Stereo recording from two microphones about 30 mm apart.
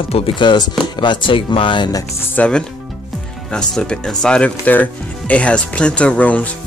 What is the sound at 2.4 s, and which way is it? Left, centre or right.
Speech, left.